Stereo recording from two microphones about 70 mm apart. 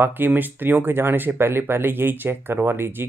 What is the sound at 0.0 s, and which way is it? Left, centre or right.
Speech, right.